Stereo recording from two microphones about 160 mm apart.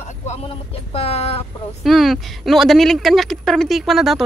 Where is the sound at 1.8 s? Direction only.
Centre (ahead or behind).